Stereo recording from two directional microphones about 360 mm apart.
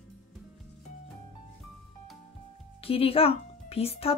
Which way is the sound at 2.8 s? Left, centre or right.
Centre.